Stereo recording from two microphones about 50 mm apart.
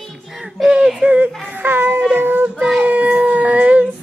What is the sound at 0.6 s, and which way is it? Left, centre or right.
Speech, centre.